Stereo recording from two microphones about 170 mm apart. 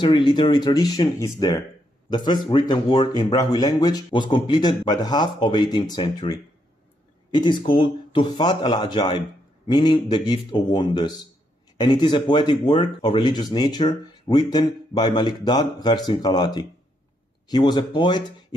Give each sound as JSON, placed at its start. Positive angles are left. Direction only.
{"t": 0.0, "sound": "speech", "side_deg": 25}